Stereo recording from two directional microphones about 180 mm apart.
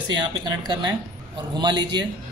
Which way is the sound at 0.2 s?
25° right (ahead or behind).